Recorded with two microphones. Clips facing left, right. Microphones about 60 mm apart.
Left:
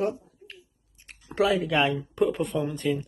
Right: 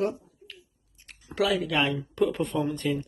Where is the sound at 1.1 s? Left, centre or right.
Left.